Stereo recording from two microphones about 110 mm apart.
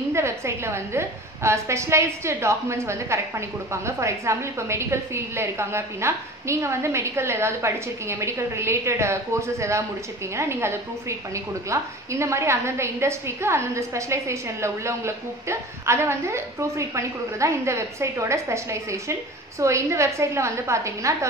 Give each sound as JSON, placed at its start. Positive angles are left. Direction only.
{"t": 0.1, "sound": "a woman's voice", "side_deg": -25}